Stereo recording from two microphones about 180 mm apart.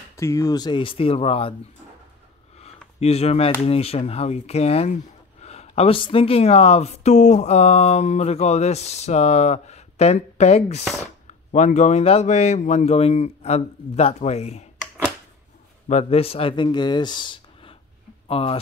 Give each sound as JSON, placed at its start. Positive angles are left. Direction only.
{"t": 0.2, "sound": "speech", "side_deg": 15}
{"t": 2.6, "sound": "a sound", "side_deg": 35}
{"t": 3.6, "sound": "speech", "side_deg": 35}
{"t": 15.9, "sound": "speech", "side_deg": 35}